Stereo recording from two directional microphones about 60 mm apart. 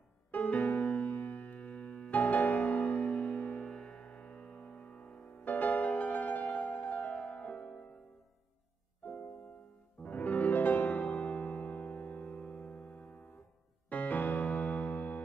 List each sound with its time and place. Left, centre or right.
0.3 s music: left
10.0 s music: left